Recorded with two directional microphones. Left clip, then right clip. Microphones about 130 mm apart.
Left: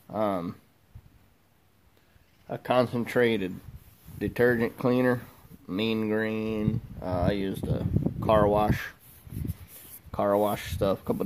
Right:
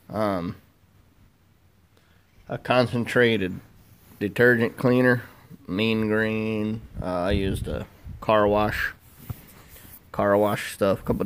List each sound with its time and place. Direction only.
0.1 s speech: 15° left (ahead or behind)
2.4 s speech: 15° left (ahead or behind)
10.1 s speech: 10° left (ahead or behind)